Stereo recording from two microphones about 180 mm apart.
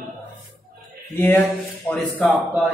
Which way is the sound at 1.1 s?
10° left (ahead or behind).